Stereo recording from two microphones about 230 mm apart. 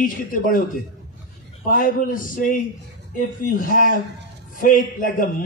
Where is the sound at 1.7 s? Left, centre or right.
Left.